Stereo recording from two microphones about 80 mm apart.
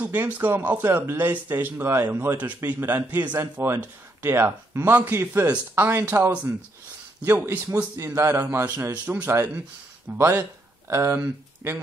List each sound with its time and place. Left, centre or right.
0.0 s speech: right
7.9 s speech: right